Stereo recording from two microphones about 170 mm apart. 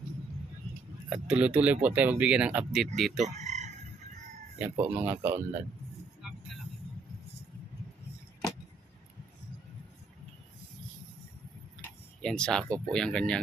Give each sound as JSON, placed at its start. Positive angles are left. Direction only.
{"t": 1.1, "sound": "speech", "side_deg": -5}
{"t": 3.2, "sound": "chicken", "side_deg": -40}
{"t": 4.6, "sound": "speech", "side_deg": -10}
{"t": 11.8, "sound": "tick-tock", "side_deg": 5}
{"t": 12.8, "sound": "speech", "side_deg": 5}